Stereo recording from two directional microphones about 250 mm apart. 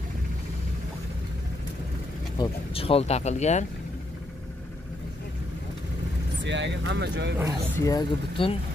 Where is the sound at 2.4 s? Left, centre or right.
Left.